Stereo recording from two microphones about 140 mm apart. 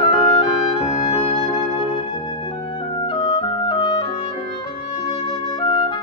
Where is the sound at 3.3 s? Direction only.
35° left (ahead or behind).